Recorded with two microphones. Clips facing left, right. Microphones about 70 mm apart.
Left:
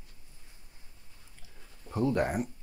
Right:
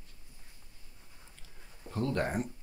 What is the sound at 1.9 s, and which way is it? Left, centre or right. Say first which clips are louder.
Speech: left 4 dB; centre.